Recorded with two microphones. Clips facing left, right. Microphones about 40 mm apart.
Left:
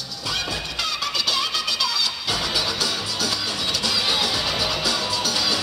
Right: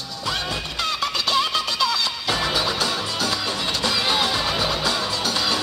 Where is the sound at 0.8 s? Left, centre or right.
Right.